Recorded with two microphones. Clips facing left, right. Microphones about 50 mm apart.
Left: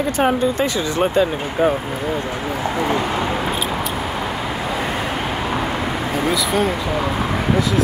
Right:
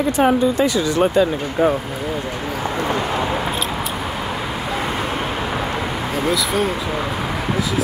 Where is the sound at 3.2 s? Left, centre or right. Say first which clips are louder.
Even; centre.